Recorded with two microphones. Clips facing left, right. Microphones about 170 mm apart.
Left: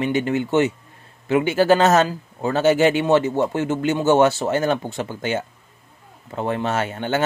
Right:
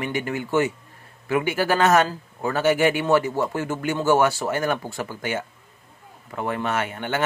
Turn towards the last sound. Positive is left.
turn(degrees=30)  # may be behind; listen again after turning